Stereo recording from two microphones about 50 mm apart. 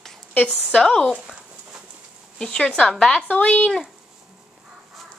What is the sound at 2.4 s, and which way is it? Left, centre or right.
Speech, centre.